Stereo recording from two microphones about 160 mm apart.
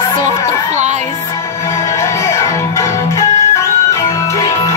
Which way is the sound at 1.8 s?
20° left (ahead or behind).